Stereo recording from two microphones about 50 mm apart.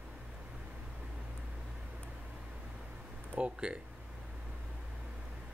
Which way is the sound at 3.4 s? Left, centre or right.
Centre.